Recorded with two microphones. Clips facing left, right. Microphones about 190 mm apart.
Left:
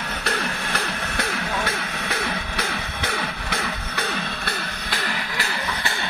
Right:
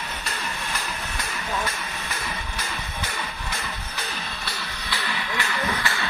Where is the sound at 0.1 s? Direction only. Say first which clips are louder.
Left 6 dB; 65° left (ahead or behind).